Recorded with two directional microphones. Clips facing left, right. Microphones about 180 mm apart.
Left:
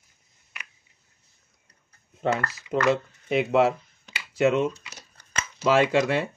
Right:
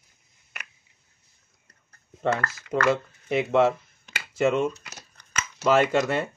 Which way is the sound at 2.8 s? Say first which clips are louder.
Even; centre (ahead or behind).